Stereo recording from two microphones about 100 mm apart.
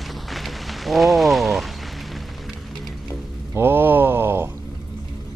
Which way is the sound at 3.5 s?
20° right (ahead or behind).